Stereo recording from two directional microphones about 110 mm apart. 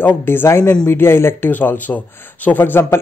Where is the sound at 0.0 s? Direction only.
20° left (ahead or behind).